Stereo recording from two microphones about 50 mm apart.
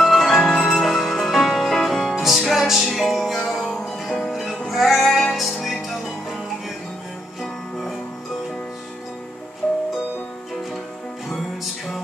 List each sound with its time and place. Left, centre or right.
0.0 s music: centre
0.4 s music: centre
0.7 s music: centre
9.6 s music: centre